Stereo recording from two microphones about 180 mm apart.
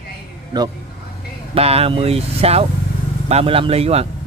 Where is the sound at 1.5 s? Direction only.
35° right (ahead or behind).